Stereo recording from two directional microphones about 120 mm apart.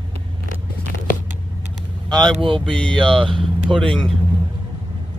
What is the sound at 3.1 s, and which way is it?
Speech, 45° right (ahead or behind).